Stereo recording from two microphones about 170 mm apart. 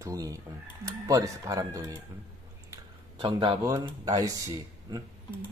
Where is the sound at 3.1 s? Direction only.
30° right (ahead or behind).